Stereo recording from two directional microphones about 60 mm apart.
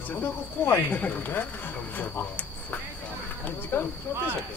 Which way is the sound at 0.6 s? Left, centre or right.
Left.